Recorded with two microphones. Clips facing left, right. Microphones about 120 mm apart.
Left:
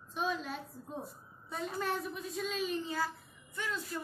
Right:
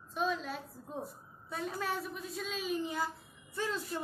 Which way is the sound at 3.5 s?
35° right (ahead or behind).